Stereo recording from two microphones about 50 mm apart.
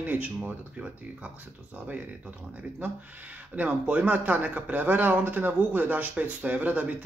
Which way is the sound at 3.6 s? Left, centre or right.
Right.